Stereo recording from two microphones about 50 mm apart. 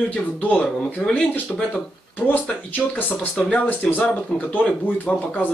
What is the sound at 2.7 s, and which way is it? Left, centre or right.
A man's voice, left.